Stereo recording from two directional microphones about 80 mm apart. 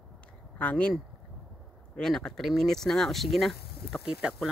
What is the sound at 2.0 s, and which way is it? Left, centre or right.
Speech, centre.